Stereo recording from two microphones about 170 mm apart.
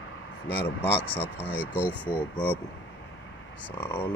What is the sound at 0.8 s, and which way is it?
Speech, 10° left (ahead or behind).